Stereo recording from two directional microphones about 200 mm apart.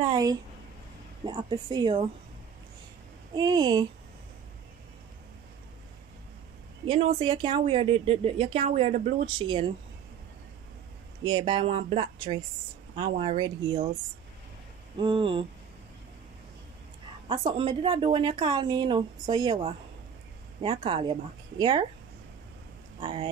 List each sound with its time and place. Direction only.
0.0 s speech: 20° right (ahead or behind)
3.3 s speech: 20° right (ahead or behind)
6.9 s speech: 25° right (ahead or behind)
9.4 s speech: 25° right (ahead or behind)
11.2 s speech: 25° right (ahead or behind)
15.0 s speech: 25° right (ahead or behind)
17.5 s speech: 25° right (ahead or behind)
22.9 s speech: 25° right (ahead or behind)